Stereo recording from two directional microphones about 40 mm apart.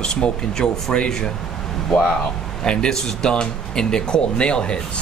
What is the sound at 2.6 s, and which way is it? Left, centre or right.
Speech, centre.